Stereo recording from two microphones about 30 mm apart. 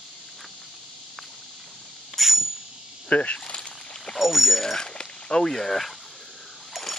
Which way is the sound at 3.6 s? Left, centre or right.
Left.